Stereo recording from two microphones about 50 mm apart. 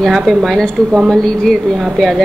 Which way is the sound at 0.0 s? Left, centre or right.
Centre.